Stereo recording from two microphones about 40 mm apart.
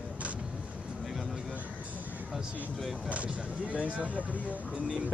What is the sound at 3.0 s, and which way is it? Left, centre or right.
Speech, right.